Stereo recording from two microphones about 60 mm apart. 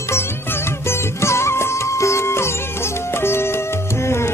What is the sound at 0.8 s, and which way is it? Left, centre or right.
Music, left.